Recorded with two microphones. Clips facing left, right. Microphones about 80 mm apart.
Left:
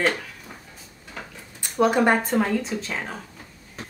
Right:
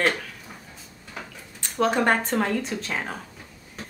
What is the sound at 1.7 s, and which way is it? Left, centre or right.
Speech, centre.